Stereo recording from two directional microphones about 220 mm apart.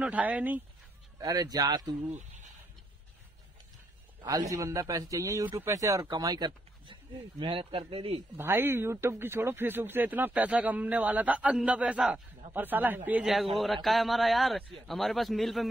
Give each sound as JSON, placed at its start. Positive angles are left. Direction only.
{"t": 0.0, "sound": "a man's voice", "side_deg": -5}
{"t": 2.1, "sound": "a sound", "side_deg": -35}
{"t": 4.2, "sound": "a man's voice", "side_deg": -15}
{"t": 8.4, "sound": "a man's voice", "side_deg": -10}